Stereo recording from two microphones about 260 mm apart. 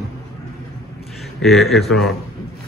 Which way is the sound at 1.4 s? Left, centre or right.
Centre.